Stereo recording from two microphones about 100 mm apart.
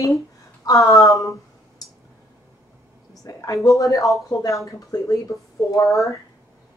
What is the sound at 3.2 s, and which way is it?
Speech, 35° left (ahead or behind).